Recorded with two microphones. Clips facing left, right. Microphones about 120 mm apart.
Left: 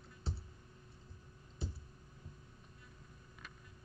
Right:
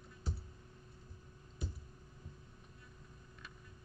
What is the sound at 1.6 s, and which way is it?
Clicking, 30° left (ahead or behind).